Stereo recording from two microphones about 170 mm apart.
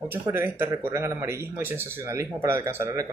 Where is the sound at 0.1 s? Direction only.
15° right (ahead or behind).